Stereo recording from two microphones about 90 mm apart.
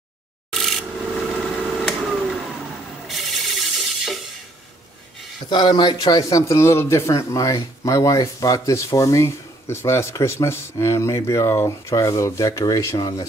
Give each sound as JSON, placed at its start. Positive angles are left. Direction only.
{"t": 0.5, "sound": "rub", "side_deg": 0}
{"t": 1.3, "sound": "a sound", "side_deg": -5}
{"t": 3.1, "sound": "rub", "side_deg": 0}
{"t": 5.5, "sound": "a man's voice", "side_deg": 55}